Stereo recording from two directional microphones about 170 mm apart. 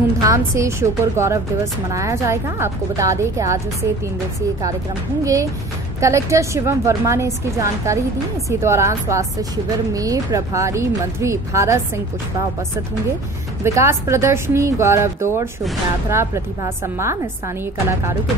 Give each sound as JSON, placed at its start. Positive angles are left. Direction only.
{"t": 0.2, "sound": "a woman's voice", "side_deg": -20}
{"t": 5.2, "sound": "a woman's voice", "side_deg": -20}
{"t": 13.7, "sound": "a woman's voice", "side_deg": -15}